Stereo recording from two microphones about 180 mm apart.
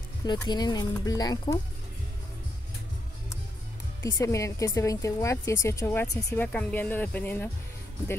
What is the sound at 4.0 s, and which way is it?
A woman's voice, 15° left (ahead or behind).